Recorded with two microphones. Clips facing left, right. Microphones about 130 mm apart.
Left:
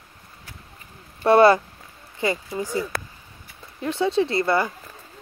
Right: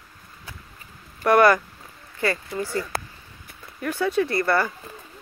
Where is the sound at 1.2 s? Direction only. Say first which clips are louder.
Left 2 dB; 25° left (ahead or behind).